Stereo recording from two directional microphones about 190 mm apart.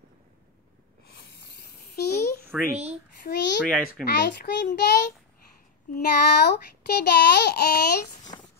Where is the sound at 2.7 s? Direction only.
35° right (ahead or behind).